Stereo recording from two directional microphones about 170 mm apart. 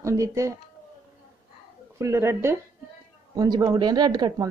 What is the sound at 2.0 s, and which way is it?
Speech, 15° right (ahead or behind).